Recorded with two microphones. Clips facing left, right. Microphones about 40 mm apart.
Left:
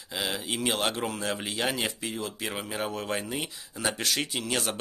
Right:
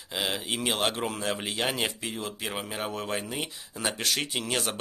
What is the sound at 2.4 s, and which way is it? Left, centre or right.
Speech, centre.